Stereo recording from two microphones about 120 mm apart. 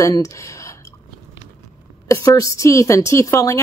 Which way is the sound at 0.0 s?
25° left (ahead or behind).